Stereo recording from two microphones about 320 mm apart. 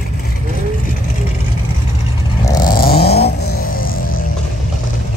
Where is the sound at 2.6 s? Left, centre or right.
Left.